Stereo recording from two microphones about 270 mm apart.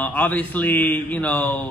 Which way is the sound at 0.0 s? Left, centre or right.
Centre.